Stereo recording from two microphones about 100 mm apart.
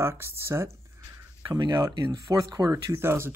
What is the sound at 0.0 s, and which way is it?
Speech, 25° right (ahead or behind).